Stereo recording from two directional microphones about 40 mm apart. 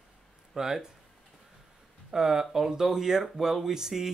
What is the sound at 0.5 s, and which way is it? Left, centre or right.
Speech, centre.